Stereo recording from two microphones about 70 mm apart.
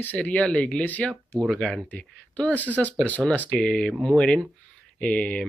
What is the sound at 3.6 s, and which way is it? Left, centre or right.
Speech, centre.